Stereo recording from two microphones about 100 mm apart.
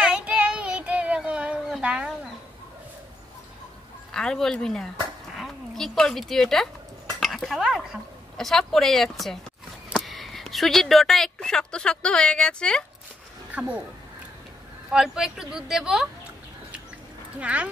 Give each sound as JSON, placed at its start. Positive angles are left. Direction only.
{"t": 0.0, "sound": "child singing", "side_deg": -10}
{"t": 1.8, "sound": "chicken", "side_deg": -10}
{"t": 4.1, "sound": "speech", "side_deg": 5}
{"t": 13.5, "sound": "speech", "side_deg": -15}
{"t": 14.9, "sound": "speech", "side_deg": -5}
{"t": 17.4, "sound": "speech", "side_deg": -15}